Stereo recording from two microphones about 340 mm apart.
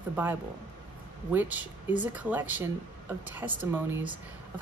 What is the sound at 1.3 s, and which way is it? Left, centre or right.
A woman's voice, centre.